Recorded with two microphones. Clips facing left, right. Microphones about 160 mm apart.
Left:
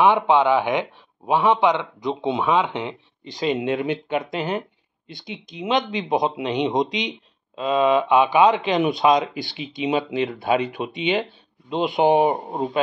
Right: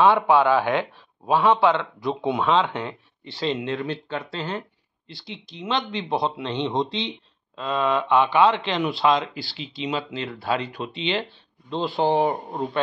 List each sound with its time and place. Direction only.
0.0 s a man's voice: 20° left (ahead or behind)